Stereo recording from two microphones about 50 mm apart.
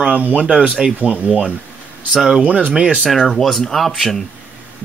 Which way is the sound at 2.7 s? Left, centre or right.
Centre.